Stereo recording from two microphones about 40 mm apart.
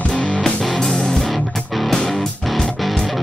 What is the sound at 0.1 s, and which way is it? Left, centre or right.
Music, left.